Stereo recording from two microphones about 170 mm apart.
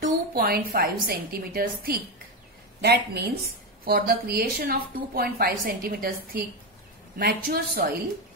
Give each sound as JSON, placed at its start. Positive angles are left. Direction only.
{"t": 0.0, "sound": "a woman's voice", "side_deg": -60}